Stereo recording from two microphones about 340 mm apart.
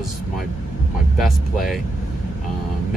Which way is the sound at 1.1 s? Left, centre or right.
Centre.